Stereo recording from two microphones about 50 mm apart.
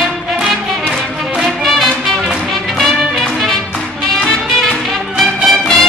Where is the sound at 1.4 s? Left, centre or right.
Centre.